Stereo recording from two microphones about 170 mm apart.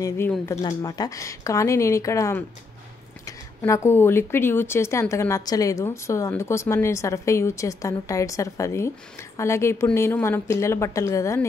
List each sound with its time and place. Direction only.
0.5 s speech: 20° left (ahead or behind)